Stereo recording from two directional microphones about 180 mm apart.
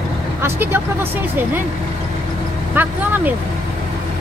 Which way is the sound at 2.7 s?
10° right (ahead or behind).